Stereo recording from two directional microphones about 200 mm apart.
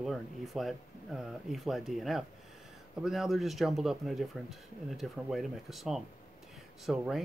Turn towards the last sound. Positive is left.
turn(degrees=-5)  # may be behind; listen again after turning